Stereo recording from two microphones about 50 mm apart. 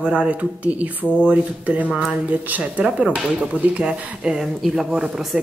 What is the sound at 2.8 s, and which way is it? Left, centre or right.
Speech, centre.